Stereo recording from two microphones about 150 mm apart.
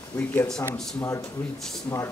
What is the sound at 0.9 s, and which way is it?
A man's voice, 20° left (ahead or behind).